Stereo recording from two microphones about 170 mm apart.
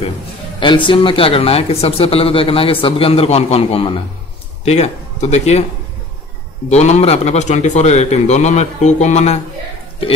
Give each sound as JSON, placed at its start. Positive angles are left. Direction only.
{"t": 0.6, "sound": "speech", "side_deg": 30}
{"t": 6.7, "sound": "speech", "side_deg": 40}